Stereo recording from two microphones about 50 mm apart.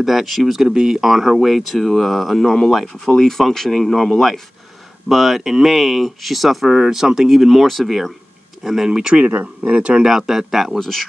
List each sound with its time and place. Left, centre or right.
0.0 s speech: centre
9.2 s speech: right
9.7 s speech: right
10.0 s speech: centre
10.8 s speech: centre